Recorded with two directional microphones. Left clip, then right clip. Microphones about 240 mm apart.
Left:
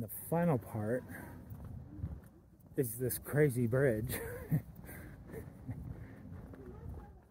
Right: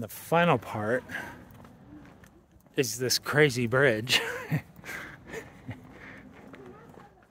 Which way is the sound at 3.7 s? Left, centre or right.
Right.